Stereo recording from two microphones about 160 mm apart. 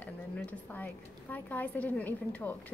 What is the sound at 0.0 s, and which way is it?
A woman's voice, 10° left (ahead or behind).